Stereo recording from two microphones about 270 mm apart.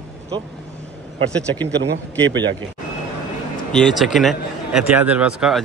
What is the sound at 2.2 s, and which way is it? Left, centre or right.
Speech, right.